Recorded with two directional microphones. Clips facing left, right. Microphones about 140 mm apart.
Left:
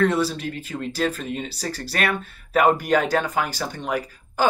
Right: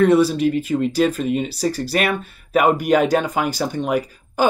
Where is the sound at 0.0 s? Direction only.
15° right (ahead or behind).